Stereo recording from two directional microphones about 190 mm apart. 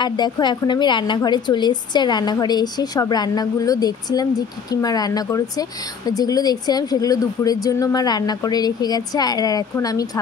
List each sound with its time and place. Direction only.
0.0 s a woman's voice: 20° left (ahead or behind)